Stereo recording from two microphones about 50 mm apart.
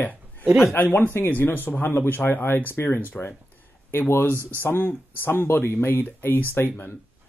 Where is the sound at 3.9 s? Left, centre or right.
Left.